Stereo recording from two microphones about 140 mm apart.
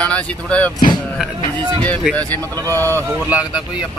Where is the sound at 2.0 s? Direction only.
5° left (ahead or behind).